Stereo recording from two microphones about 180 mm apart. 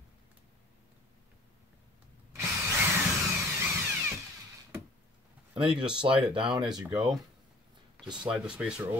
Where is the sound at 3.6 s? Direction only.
15° right (ahead or behind).